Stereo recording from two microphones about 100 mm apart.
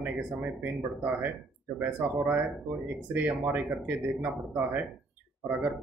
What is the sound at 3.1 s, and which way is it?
Speech, 15° right (ahead or behind).